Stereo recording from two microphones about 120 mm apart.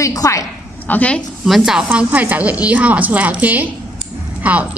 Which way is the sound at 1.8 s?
15° right (ahead or behind).